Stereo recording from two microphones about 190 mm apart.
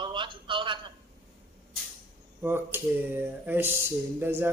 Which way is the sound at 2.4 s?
10° right (ahead or behind).